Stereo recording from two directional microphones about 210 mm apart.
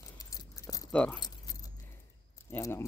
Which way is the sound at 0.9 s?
5° left (ahead or behind).